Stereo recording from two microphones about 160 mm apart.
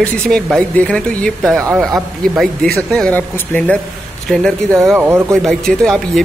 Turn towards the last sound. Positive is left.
turn(degrees=0)  # may be behind; listen again after turning